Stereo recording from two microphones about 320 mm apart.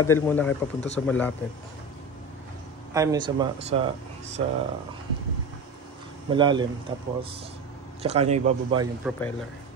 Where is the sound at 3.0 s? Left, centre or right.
Centre.